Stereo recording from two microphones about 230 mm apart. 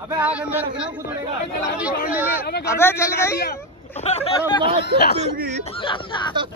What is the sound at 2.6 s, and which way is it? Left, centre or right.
Speech, centre.